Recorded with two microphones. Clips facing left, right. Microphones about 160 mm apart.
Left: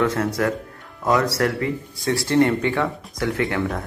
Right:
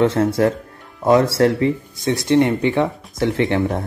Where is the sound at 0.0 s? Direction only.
30° right (ahead or behind).